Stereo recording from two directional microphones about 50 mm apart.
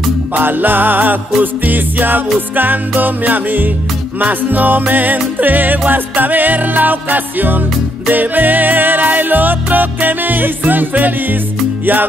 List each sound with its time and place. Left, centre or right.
0.3 s music: right